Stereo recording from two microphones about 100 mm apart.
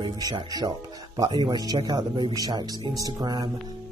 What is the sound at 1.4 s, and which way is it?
Speech, 40° right (ahead or behind).